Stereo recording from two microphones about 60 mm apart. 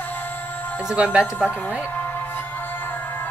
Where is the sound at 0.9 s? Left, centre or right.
Centre.